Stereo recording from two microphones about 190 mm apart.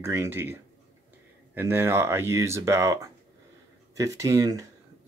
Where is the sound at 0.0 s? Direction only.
15° right (ahead or behind).